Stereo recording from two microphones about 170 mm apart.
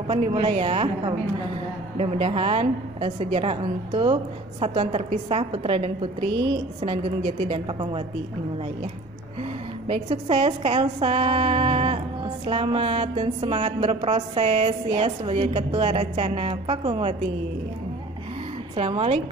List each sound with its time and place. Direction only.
0.0 s a woman's voice: 30° right (ahead or behind)
9.4 s a woman's voice: 35° right (ahead or behind)
18.8 s a woman's voice: 35° right (ahead or behind)